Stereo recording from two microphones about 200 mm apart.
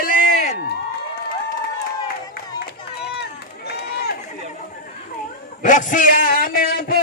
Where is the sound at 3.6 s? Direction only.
55° left (ahead or behind).